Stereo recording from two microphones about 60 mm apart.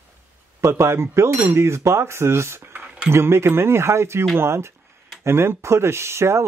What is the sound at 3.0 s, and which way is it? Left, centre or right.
Speech, right.